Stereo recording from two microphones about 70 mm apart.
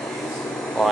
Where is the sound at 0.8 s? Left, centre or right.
Centre.